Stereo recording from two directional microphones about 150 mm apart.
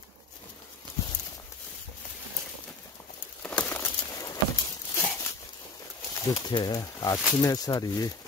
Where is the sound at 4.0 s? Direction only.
25° left (ahead or behind).